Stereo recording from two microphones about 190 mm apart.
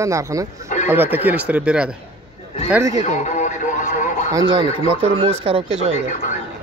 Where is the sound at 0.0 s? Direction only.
15° right (ahead or behind).